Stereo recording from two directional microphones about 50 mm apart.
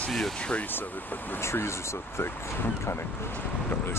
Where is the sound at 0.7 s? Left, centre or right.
Left.